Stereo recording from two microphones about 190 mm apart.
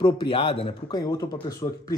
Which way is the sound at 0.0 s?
25° left (ahead or behind).